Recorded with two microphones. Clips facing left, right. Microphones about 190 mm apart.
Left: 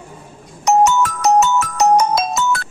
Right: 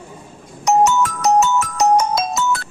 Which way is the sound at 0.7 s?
65° left (ahead or behind).